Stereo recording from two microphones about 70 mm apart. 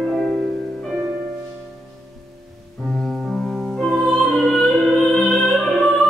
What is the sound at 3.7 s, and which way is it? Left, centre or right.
Music, centre.